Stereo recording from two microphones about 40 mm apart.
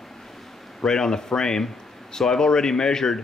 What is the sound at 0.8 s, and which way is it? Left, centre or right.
Speech, centre.